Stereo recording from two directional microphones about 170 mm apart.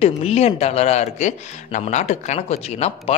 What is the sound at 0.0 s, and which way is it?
Speech, 40° left (ahead or behind).